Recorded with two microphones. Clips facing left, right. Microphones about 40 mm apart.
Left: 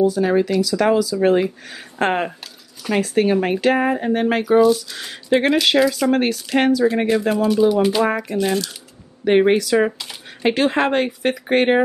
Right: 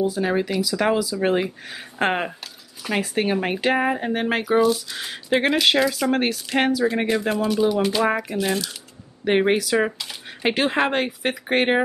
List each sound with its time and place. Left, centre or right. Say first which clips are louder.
0.0 s speech: left 5 dB; centre
10.4 s speech: left 3 dB; centre